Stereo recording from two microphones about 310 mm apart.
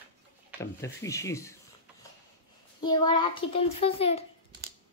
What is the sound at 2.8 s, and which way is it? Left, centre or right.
A child's voice, centre.